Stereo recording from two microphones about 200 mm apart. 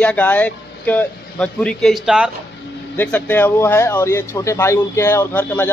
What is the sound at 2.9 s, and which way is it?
Speech, 10° left (ahead or behind).